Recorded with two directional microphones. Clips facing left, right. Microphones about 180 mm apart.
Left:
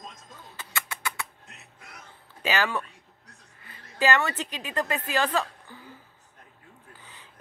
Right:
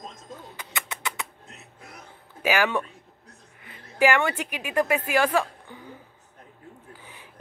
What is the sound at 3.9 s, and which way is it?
A woman's voice, 10° right (ahead or behind).